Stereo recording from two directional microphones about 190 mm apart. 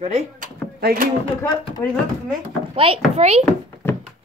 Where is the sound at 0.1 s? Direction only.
50° right (ahead or behind).